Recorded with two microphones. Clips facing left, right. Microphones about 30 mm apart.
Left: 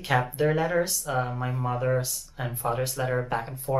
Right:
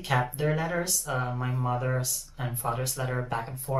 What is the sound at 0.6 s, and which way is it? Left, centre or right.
Speech, centre.